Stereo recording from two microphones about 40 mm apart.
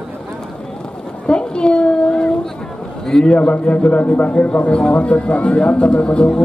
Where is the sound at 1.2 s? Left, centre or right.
Left.